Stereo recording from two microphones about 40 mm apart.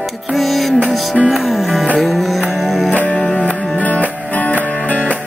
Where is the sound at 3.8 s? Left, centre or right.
Left.